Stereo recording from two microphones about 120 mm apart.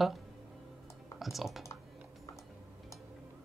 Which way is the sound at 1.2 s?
Centre (ahead or behind).